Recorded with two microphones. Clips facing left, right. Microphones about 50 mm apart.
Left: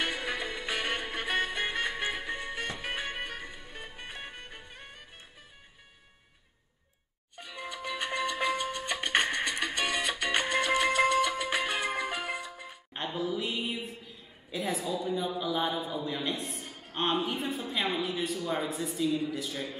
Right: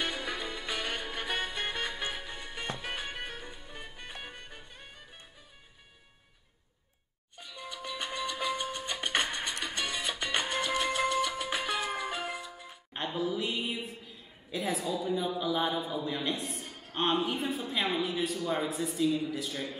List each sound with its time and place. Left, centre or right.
0.0 s music: left
7.3 s music: left
9.8 s music: left
10.3 s music: left
11.9 s music: left
12.9 s a sound: centre